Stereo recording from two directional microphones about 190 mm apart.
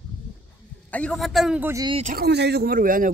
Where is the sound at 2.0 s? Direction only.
55° right (ahead or behind).